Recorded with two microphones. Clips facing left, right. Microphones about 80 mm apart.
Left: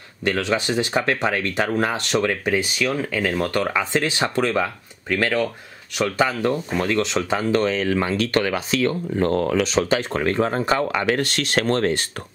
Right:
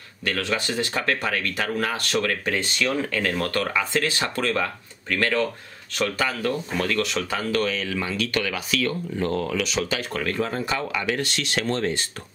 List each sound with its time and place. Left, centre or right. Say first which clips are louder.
0.2 s speech: left 4 dB; left
9.2 s speech: left 6 dB; left